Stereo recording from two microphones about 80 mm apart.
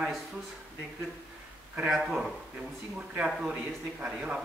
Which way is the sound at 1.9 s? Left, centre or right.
Centre.